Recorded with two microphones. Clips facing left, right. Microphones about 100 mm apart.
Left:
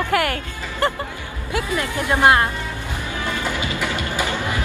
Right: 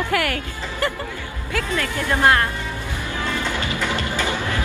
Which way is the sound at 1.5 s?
20° left (ahead or behind).